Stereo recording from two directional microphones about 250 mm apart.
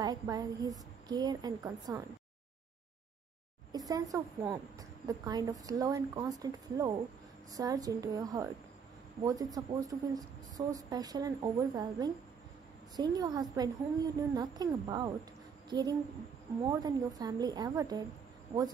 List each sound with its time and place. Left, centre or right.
0.0 s a woman's voice: centre
3.7 s a woman's voice: centre